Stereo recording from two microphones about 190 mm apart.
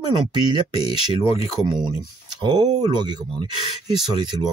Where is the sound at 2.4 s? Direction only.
25° right (ahead or behind).